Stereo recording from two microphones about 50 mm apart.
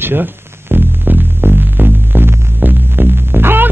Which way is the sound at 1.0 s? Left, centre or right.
Right.